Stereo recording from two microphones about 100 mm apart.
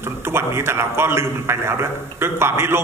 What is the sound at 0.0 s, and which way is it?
A man's voice, 25° right (ahead or behind).